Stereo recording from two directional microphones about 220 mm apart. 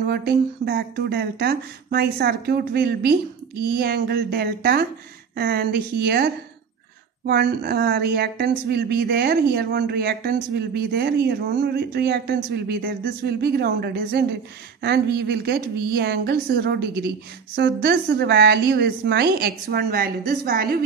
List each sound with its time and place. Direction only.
0.0 s speech: 45° right (ahead or behind)